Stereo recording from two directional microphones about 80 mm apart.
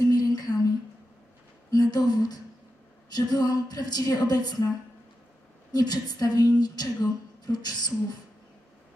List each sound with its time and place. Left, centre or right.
0.0 s a sound: left
1.7 s a woman's voice: left
5.7 s a woman's voice: left